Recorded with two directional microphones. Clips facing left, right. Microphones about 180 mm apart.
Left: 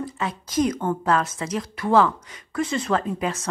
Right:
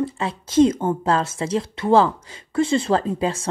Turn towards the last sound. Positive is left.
turn(degrees=-30)  # may be behind; listen again after turning